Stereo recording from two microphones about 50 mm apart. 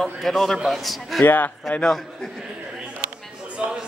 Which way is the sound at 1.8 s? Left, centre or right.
Centre.